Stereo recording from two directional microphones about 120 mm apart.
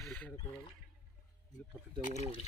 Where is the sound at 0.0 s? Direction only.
5° left (ahead or behind).